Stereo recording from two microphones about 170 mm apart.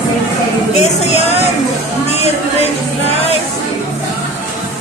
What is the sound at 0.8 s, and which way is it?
Speech, 40° left (ahead or behind).